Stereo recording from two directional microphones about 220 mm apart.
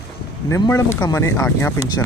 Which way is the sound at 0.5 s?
15° left (ahead or behind).